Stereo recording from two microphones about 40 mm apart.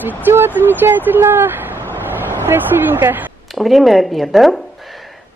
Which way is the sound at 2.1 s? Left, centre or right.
Right.